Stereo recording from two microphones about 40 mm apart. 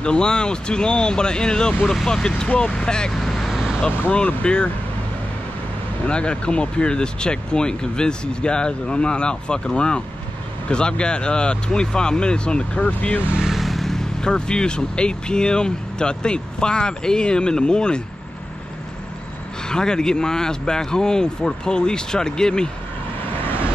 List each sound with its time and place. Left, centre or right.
0.0 s speech: left
3.1 s vehicle: centre
3.8 s speech: left
6.0 s speech: left
12.8 s speech: left
13.5 s vehicle: centre
14.2 s speech: left
19.7 s speech: centre